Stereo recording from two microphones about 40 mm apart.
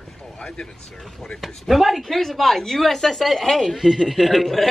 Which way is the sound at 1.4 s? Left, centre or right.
Centre.